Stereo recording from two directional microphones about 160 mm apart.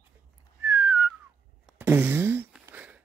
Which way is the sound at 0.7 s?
15° right (ahead or behind).